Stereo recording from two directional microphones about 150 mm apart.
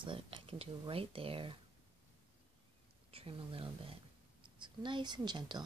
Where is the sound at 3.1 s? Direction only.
35° right (ahead or behind).